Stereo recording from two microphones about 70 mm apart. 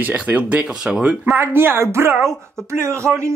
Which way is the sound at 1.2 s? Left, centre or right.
Right.